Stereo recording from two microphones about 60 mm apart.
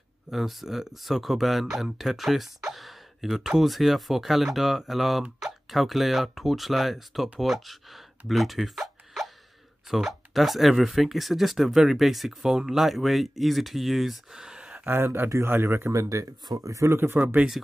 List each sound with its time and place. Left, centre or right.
0.3 s speech: centre
14.9 s speech: right
15.9 s speech: right
16.9 s speech: right